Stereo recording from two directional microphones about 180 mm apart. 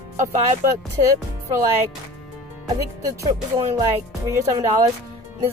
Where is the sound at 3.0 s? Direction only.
20° right (ahead or behind).